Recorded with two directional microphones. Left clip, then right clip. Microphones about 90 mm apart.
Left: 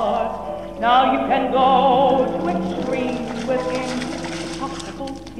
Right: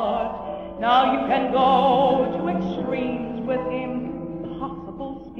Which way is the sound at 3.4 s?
30° left (ahead or behind).